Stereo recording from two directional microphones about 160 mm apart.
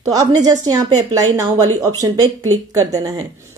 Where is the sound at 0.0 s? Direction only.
25° right (ahead or behind).